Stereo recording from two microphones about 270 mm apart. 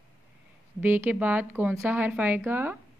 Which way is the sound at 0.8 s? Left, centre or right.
Centre.